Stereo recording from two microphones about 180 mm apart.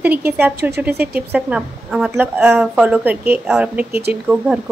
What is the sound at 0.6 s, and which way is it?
Speech, 65° right (ahead or behind).